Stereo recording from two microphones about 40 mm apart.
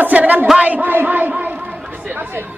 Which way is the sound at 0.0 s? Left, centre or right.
Right.